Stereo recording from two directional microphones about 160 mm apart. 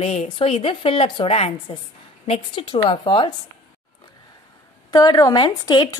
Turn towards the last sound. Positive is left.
turn(degrees=25)  # may be behind; listen again after turning